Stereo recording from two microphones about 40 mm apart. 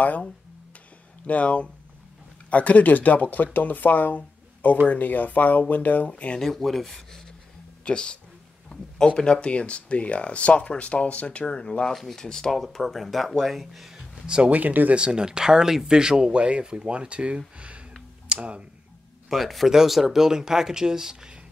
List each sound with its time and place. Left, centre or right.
1.2 s speech: left
6.0 s speech: left
6.4 s speech: centre
7.8 s speech: left
11.9 s speech: centre
12.2 s speech: centre
12.4 s speech: centre
14.2 s speech: right
14.5 s speech: right
15.0 s speech: right
17.6 s a sound: right
18.3 s speech: right
19.2 s speech: centre